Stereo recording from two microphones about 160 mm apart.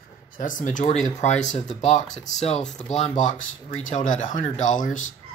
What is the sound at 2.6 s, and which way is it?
Speech, 5° left (ahead or behind).